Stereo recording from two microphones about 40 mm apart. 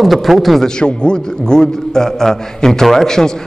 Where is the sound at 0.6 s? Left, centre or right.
Left.